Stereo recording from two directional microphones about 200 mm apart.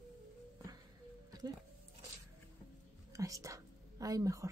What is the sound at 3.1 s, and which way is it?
Whispering, 15° right (ahead or behind).